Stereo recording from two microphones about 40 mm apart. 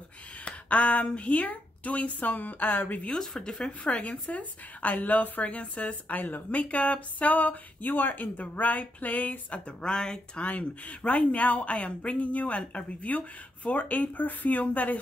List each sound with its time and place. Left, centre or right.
0.5 s speech: left
3.1 s speech: centre
3.9 s speech: left
5.4 s speech: left
6.0 s speech: left
6.5 s speech: left
9.7 s speech: centre
10.4 s speech: left